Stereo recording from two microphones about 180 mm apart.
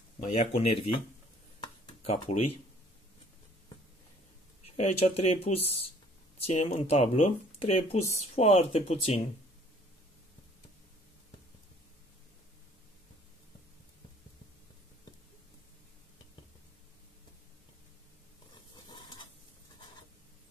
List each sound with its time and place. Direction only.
0.3 s speech: 35° left (ahead or behind)
2.0 s speech: 35° left (ahead or behind)
4.7 s speech: 35° left (ahead or behind)
18.9 s sizzle: 25° left (ahead or behind)